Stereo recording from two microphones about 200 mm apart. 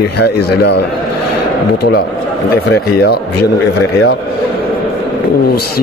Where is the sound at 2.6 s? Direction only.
55° left (ahead or behind).